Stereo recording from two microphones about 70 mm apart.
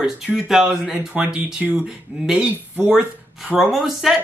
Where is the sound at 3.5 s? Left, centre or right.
Centre.